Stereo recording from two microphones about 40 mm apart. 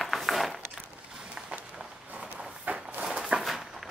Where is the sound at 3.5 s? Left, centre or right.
Centre.